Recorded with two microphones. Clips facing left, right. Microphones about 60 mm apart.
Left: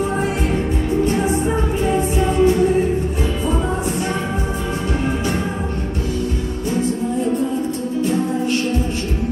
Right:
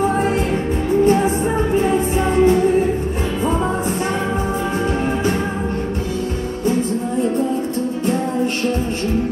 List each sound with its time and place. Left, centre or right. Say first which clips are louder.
1.0 s music: right 4 dB; right